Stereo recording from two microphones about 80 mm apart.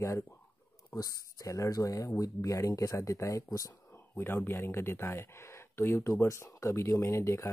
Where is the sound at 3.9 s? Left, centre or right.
Left.